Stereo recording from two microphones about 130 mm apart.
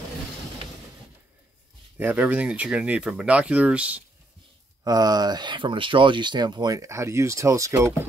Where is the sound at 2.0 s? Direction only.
10° right (ahead or behind).